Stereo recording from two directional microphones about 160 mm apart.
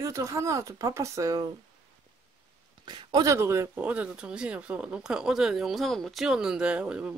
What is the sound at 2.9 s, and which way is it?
Speech, 30° right (ahead or behind).